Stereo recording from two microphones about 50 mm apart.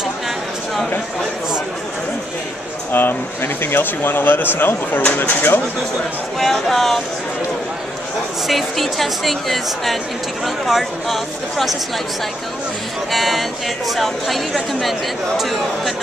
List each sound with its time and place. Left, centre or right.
2.9 s speech: left
6.4 s speech: centre
8.5 s speech: centre
13.1 s speech: centre